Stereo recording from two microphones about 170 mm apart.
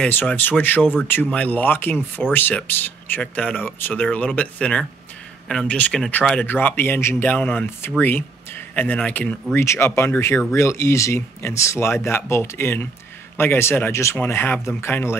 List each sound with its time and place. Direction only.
0.0 s speech: 10° left (ahead or behind)